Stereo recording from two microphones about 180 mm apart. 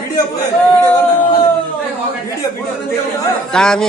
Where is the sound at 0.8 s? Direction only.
20° left (ahead or behind).